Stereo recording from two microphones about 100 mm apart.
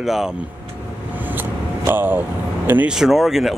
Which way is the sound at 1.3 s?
20° right (ahead or behind).